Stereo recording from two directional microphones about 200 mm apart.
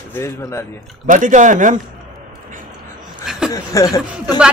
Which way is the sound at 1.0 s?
40° right (ahead or behind).